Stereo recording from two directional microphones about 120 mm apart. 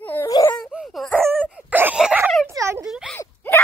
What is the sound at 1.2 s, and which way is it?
Dog, 15° right (ahead or behind).